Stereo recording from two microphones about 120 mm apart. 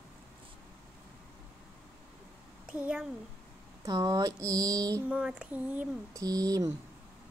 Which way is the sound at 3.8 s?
30° right (ahead or behind).